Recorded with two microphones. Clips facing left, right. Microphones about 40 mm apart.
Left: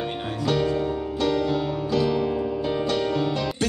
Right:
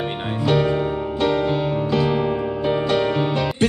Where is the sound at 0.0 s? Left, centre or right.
Right.